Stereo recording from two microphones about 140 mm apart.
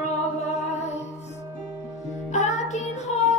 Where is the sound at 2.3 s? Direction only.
60° left (ahead or behind).